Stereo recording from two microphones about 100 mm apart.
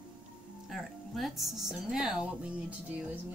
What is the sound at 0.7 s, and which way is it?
Speech, centre (ahead or behind).